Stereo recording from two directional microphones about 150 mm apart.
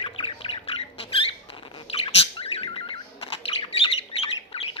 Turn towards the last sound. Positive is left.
turn(degrees=40)  # may be behind; listen again after turning